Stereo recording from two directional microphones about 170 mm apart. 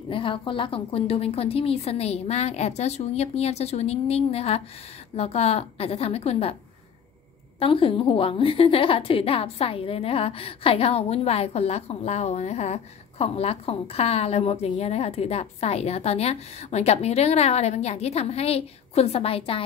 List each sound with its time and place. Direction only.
0.1 s a woman's voice: 30° left (ahead or behind)
7.5 s a woman's voice: 30° left (ahead or behind)